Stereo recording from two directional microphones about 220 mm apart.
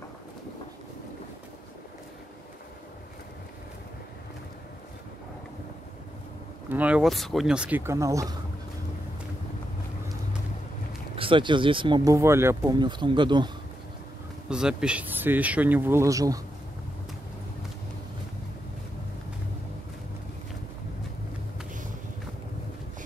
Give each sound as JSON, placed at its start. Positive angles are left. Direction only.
{"t": 6.7, "sound": "speech", "side_deg": -5}
{"t": 11.1, "sound": "speech", "side_deg": -25}
{"t": 14.5, "sound": "speech", "side_deg": -5}